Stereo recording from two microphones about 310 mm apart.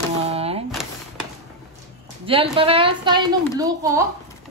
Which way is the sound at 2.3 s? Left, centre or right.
Centre.